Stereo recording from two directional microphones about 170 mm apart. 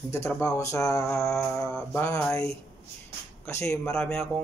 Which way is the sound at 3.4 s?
15° left (ahead or behind).